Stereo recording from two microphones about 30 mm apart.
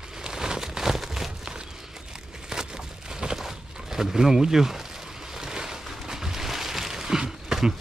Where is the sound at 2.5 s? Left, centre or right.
Right.